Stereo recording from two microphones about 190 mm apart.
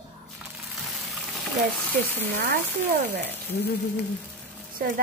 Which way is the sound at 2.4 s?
55° right (ahead or behind).